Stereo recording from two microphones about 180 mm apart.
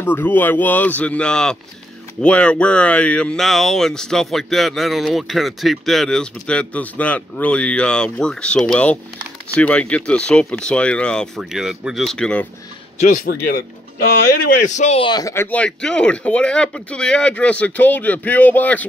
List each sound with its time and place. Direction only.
0.0 s speech: 10° left (ahead or behind)
12.9 s speech: 45° left (ahead or behind)
13.3 s speech: 55° left (ahead or behind)
14.7 s speech: 40° left (ahead or behind); by 18.9 s 10° left (ahead or behind)